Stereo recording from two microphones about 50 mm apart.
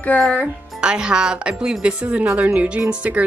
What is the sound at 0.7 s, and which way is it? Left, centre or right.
A woman's voice, centre.